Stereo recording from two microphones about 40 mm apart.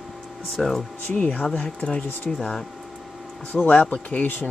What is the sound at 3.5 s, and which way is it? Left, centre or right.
Speech, left.